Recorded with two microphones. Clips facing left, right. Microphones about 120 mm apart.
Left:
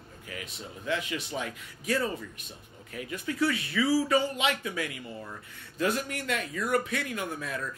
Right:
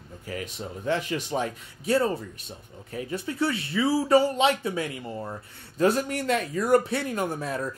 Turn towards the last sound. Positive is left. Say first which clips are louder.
# right 6 dB
turn(degrees=-35)  # may be behind; listen again after turning